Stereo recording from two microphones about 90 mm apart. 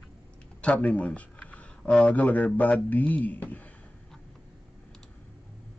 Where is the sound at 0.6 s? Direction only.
10° left (ahead or behind).